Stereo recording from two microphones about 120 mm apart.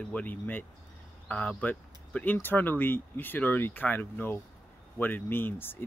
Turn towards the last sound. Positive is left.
turn(degrees=20)  # may be behind; listen again after turning